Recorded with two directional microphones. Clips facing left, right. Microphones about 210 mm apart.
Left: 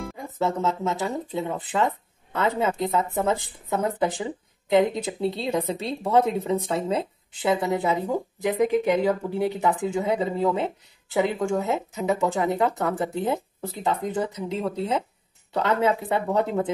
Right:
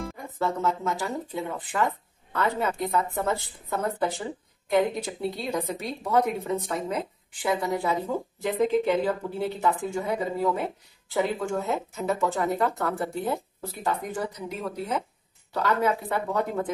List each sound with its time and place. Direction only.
0.4 s speech: 20° left (ahead or behind)